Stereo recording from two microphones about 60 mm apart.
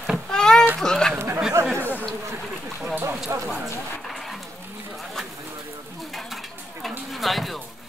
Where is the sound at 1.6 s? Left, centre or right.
Right.